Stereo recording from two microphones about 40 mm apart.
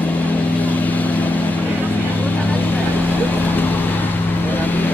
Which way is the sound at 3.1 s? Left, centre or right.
Left.